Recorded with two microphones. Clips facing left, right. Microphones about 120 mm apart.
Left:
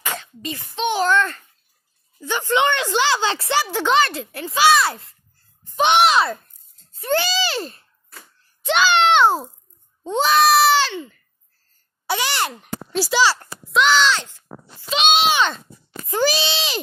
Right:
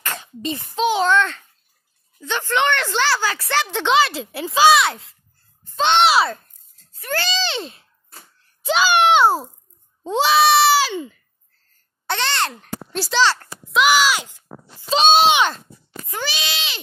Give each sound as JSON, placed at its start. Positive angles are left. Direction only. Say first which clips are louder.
{"t": 0.2, "sound": "cough", "louder": "right 4 dB", "side_deg": -25}
{"t": 0.9, "sound": "a child's voice", "louder": "left 2 dB", "side_deg": 0}
{"t": 3.7, "sound": "a child's voice", "louder": "right 2 dB", "side_deg": 0}
{"t": 5.6, "sound": "a sound", "louder": "left 1 dB", "side_deg": 15}
{"t": 6.0, "sound": "a child's voice", "louder": "right 1 dB", "side_deg": -5}
{"t": 6.9, "sound": "a sound", "louder": "left 6 dB", "side_deg": 25}
{"t": 7.2, "sound": "a child's voice", "louder": "right 1 dB", "side_deg": 10}
{"t": 8.6, "sound": "a child's voice", "louder": "right 1 dB", "side_deg": -10}
{"t": 12.1, "sound": "a child's voice", "louder": "even", "side_deg": 10}
{"t": 13.7, "sound": "a child's voice", "louder": "even", "side_deg": -5}
{"t": 14.9, "sound": "speech", "louder": "right 4 dB", "side_deg": -35}
{"t": 16.1, "sound": "speech", "louder": "left 8 dB", "side_deg": 35}